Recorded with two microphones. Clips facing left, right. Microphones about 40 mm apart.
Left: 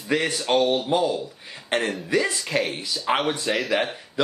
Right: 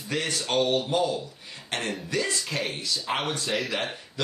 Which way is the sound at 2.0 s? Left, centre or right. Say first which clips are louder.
Left 5 dB; left.